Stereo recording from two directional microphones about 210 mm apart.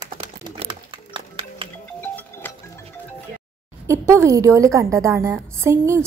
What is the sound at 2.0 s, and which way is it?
Music, 10° left (ahead or behind).